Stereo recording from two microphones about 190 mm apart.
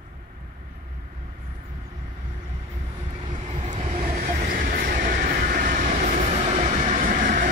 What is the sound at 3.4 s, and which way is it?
Train, 35° right (ahead or behind).